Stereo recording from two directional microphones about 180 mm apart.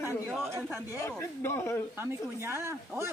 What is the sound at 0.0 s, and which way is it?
Speech, 15° right (ahead or behind).